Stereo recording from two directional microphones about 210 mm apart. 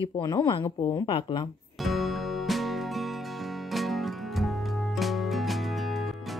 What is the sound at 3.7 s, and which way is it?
Music, centre (ahead or behind).